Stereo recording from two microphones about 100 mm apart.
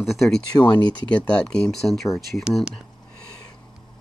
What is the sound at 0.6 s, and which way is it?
Speech, 50° left (ahead or behind).